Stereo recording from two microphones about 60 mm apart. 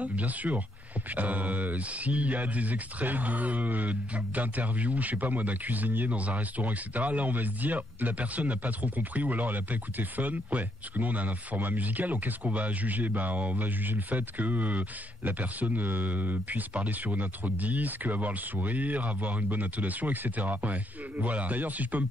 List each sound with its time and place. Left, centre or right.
0.0 s speech: right